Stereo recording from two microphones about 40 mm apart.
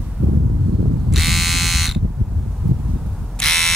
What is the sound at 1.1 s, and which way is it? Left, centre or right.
Electric shaver, centre.